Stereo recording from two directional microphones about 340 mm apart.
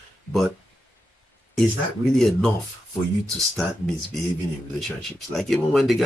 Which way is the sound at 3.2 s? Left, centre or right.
Centre.